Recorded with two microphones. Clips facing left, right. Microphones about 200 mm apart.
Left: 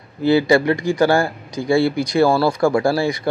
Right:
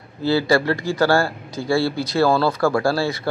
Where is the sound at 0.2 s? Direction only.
15° left (ahead or behind).